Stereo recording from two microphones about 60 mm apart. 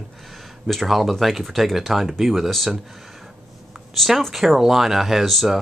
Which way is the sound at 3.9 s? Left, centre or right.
Centre.